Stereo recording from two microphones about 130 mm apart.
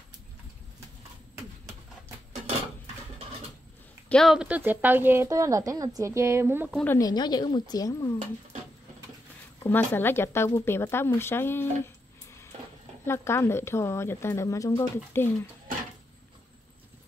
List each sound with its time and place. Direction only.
4.1 s speech: centre (ahead or behind); by 6.7 s 15° right (ahead or behind)
7.0 s speech: 30° left (ahead or behind)
9.6 s speech: 15° left (ahead or behind)
13.0 s speech: 20° left (ahead or behind)